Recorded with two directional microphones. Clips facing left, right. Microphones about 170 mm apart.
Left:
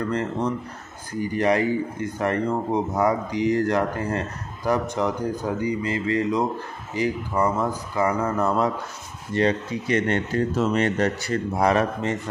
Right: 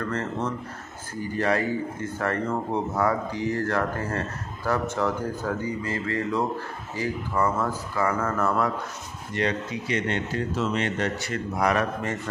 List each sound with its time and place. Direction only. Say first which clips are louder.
0.0 s speech: left 4 dB; 15° left (ahead or behind)
9.3 s speech: left 5 dB; 30° left (ahead or behind)
9.8 s speech: left 5 dB; 50° left (ahead or behind); by 12.2 s 25° left (ahead or behind)